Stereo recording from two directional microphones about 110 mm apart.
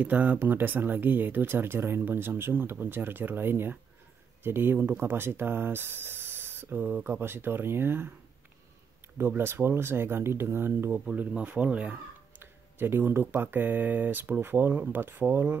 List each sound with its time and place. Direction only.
0.0 s speech: 15° right (ahead or behind)
9.2 s speech: 20° right (ahead or behind)